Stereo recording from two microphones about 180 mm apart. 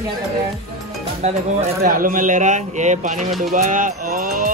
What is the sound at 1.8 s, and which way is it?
Speech, 50° right (ahead or behind).